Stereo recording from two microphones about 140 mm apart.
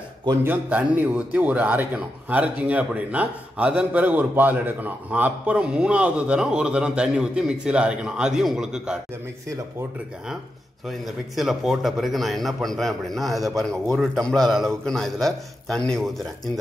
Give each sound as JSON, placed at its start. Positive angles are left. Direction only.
{"t": 0.4, "sound": "a man's voice", "side_deg": -15}
{"t": 10.9, "sound": "a man's voice", "side_deg": 0}